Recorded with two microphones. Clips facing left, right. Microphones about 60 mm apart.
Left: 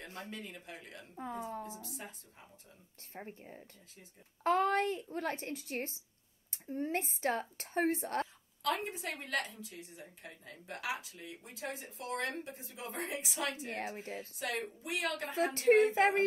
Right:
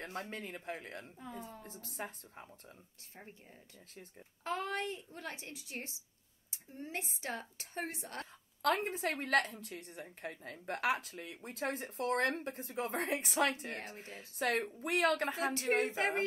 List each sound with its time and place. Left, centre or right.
0.0 s speech: right
1.1 s a woman's voice: left
2.0 s speech: right
3.2 s speech: left
4.4 s a woman's voice: left
8.6 s a woman's voice: right
13.7 s a woman's voice: left
14.4 s speech: right
15.9 s a woman's voice: left